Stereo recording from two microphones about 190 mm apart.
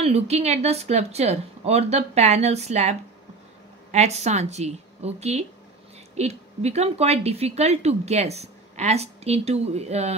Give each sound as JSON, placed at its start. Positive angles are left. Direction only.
{"t": 0.0, "sound": "speech", "side_deg": -35}